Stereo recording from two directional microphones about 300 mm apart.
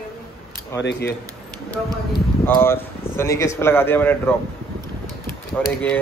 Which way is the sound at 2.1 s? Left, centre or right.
Centre.